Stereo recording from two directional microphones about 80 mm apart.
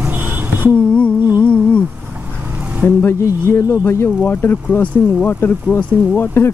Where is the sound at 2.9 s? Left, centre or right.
Left.